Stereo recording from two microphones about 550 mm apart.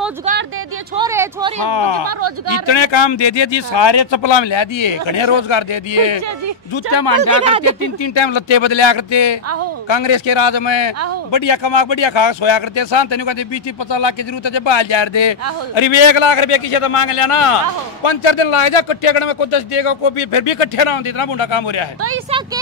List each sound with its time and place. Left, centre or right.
0.9 s a sound: centre
1.6 s speech: left
2.0 s speech: right
2.6 s a man's voice: left